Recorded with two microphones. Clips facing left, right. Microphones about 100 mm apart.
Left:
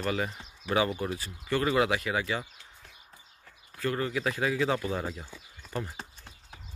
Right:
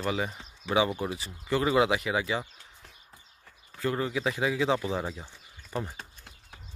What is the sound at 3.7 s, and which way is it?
Speech, 15° right (ahead or behind).